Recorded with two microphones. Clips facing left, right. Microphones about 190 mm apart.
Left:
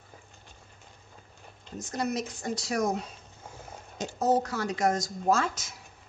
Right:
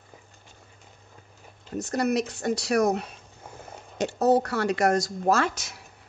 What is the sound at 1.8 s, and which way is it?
Speech, 65° right (ahead or behind).